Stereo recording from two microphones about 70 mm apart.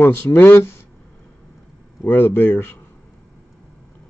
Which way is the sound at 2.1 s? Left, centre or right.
Left.